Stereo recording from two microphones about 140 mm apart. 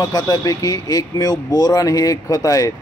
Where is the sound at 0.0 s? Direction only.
25° left (ahead or behind).